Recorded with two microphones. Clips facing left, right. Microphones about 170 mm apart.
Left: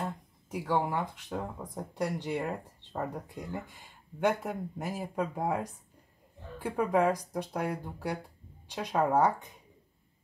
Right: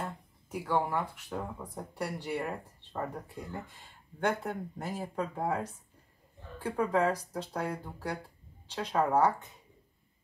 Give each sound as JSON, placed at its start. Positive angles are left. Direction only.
{"t": 0.5, "sound": "speech", "side_deg": 15}
{"t": 6.6, "sound": "speech", "side_deg": 15}